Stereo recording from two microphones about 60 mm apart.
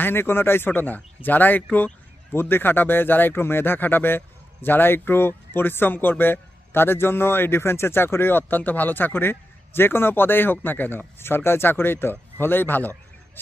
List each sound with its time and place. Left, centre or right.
0.0 s speech: left